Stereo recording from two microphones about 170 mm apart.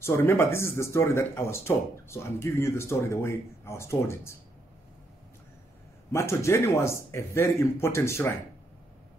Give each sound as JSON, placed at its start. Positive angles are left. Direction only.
{"t": 0.0, "sound": "speech", "side_deg": 15}
{"t": 6.1, "sound": "speech", "side_deg": 15}